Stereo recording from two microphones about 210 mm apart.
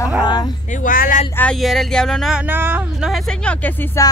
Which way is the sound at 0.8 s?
40° left (ahead or behind).